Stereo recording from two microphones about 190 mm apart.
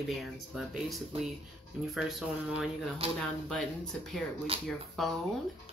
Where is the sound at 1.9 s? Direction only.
Centre (ahead or behind).